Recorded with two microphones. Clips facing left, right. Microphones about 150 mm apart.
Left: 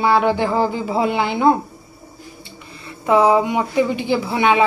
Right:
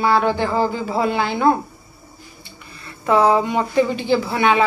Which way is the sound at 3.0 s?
10° left (ahead or behind).